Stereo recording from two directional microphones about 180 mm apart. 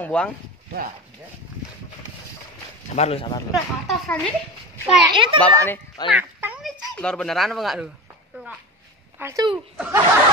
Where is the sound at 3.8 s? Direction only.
5° left (ahead or behind).